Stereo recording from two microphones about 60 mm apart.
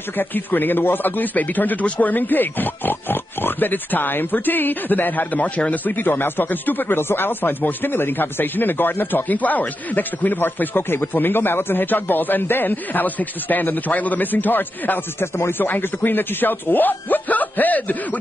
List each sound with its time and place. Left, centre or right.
0.2 s speech: left